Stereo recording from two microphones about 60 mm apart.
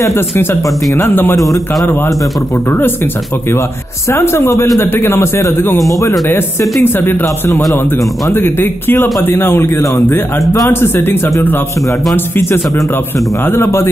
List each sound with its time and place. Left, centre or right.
4.1 s speech: left
5.9 s speech: left
6.8 s speech: left
13.5 s speech: left